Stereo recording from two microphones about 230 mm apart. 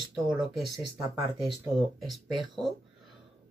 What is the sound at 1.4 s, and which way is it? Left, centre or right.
Speech, centre.